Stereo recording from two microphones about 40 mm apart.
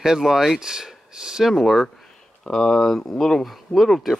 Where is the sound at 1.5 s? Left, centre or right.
Centre.